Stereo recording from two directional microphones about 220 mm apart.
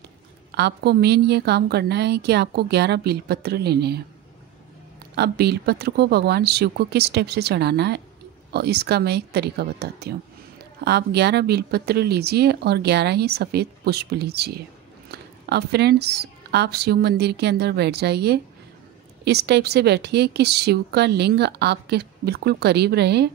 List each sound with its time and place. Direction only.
0.5 s speech: 50° right (ahead or behind)
5.1 s speech: 50° right (ahead or behind)